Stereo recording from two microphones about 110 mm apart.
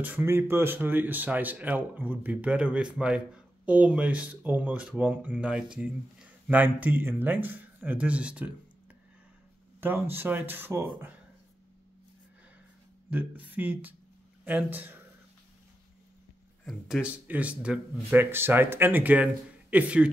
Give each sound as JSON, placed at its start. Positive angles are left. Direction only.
{"t": 0.0, "sound": "speech", "side_deg": -15}
{"t": 9.8, "sound": "speech", "side_deg": -20}
{"t": 13.1, "sound": "speech", "side_deg": -15}
{"t": 16.6, "sound": "speech", "side_deg": 0}
{"t": 17.3, "sound": "speech", "side_deg": -10}